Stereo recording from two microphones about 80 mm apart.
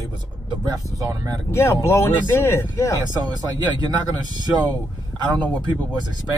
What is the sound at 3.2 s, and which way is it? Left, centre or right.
Speech, right.